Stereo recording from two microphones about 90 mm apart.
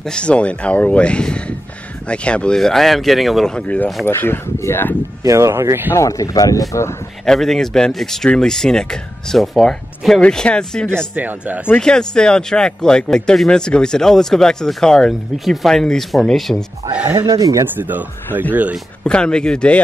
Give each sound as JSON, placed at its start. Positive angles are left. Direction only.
{"t": 0.0, "sound": "speech", "side_deg": 10}
{"t": 3.5, "sound": "speech", "side_deg": 15}
{"t": 4.0, "sound": "speech", "side_deg": 25}
{"t": 5.2, "sound": "speech", "side_deg": -35}
{"t": 5.9, "sound": "speech", "side_deg": 40}
{"t": 6.7, "sound": "speech", "side_deg": 30}
{"t": 7.2, "sound": "speech", "side_deg": 5}
{"t": 11.1, "sound": "speech", "side_deg": -20}
{"t": 11.6, "sound": "speech", "side_deg": 10}
{"t": 17.1, "sound": "speech", "side_deg": -40}
{"t": 17.7, "sound": "speech", "side_deg": -20}
{"t": 19.0, "sound": "speech", "side_deg": 10}